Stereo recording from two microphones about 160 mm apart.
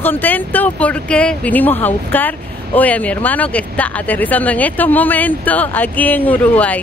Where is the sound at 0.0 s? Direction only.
10° left (ahead or behind).